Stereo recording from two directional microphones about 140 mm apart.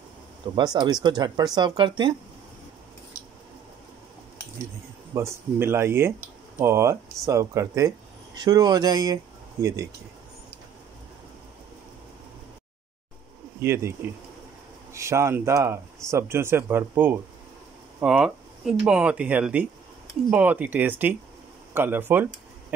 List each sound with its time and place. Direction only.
0.6 s speech: 30° right (ahead or behind)
5.1 s speech: 20° right (ahead or behind)
13.6 s speech: 20° right (ahead or behind)